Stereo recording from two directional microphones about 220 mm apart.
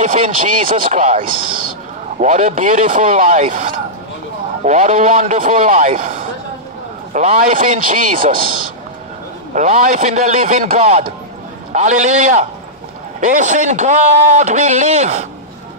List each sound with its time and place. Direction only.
0.0 s a man's voice: 35° right (ahead or behind)
2.2 s a man's voice: 35° right (ahead or behind)
9.5 s a man's voice: 35° right (ahead or behind)